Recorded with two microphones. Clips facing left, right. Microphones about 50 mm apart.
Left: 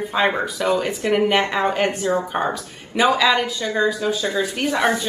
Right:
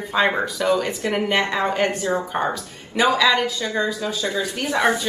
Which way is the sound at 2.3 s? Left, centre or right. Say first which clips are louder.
Left 1 dB; centre.